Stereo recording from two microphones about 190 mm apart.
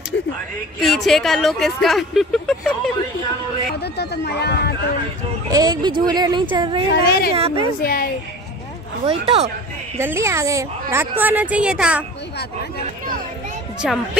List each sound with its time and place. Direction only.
0.1 s a sound: 65° left (ahead or behind)
0.7 s speech: centre (ahead or behind)
3.8 s speech: 60° left (ahead or behind)
5.5 s speech: 20° right (ahead or behind)
6.9 s speech: 55° left (ahead or behind)
7.3 s speech: 30° right (ahead or behind)
7.8 s a woman's voice: 50° left (ahead or behind)
9.0 s speech: 35° right (ahead or behind)
9.9 s speech: 15° right (ahead or behind)
13.8 s speech: centre (ahead or behind)